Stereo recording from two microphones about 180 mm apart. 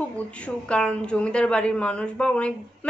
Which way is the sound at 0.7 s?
5° left (ahead or behind).